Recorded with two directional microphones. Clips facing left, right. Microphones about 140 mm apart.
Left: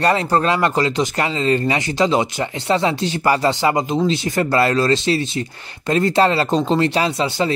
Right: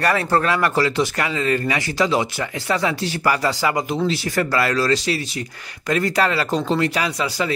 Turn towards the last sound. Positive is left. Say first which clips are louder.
# left 4 dB
turn(degrees=25)  # may be behind; listen again after turning